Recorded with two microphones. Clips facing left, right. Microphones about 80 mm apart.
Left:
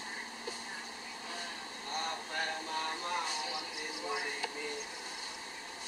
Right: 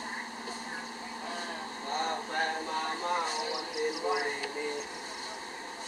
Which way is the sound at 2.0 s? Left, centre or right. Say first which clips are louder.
Right 6 dB; right.